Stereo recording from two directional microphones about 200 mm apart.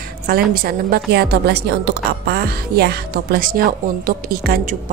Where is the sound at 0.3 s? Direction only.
45° right (ahead or behind).